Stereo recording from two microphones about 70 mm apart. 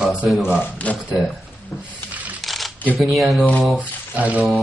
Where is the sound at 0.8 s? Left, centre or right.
Left.